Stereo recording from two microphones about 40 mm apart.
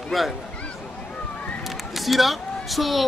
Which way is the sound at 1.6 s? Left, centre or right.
Centre.